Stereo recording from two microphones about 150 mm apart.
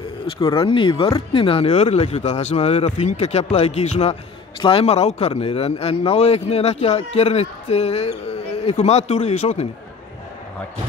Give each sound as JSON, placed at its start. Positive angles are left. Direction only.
{"t": 0.4, "sound": "a man's voice", "side_deg": 35}